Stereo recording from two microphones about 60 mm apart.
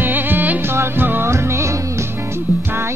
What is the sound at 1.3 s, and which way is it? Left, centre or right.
Music, right.